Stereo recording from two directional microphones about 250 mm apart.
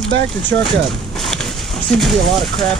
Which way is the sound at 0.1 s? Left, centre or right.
Right.